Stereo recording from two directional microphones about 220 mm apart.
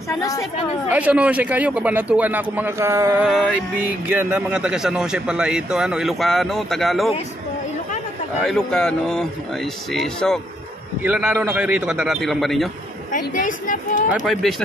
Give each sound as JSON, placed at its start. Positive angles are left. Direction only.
{"t": 0.2, "sound": "speech", "side_deg": 15}
{"t": 0.8, "sound": "a man's voice", "side_deg": -5}
{"t": 3.3, "sound": "a man's voice", "side_deg": 0}
{"t": 8.5, "sound": "a man's voice", "side_deg": 0}
{"t": 13.1, "sound": "speech", "side_deg": 35}
{"t": 14.2, "sound": "a man's voice", "side_deg": 0}